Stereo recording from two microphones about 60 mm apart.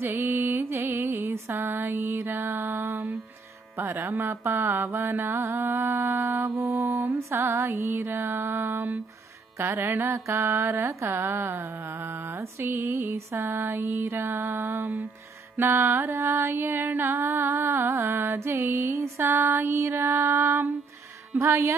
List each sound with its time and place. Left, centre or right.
0.0 s music: right
0.8 s mantra: right
2.7 s female singing: right
3.7 s music: right
8.5 s music: right
9.6 s music: right
9.8 s music: right
15.5 s music: right
16.1 s music: right